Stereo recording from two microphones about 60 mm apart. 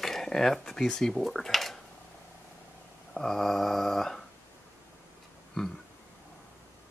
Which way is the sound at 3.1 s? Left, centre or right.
Centre.